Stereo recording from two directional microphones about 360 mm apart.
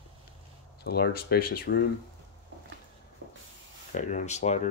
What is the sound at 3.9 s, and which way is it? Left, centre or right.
Speech, centre.